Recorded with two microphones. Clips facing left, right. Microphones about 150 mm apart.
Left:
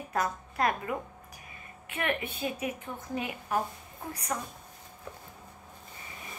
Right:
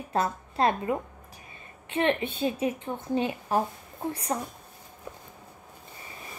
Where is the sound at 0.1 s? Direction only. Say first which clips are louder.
Right 4 dB; 25° right (ahead or behind).